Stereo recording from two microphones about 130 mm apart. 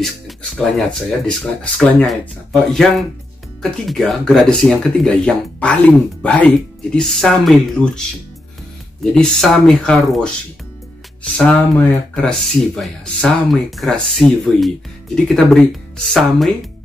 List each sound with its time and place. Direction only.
0.0 s speech: centre (ahead or behind)
9.1 s speech: 5° left (ahead or behind)
12.2 s speech: 5° left (ahead or behind)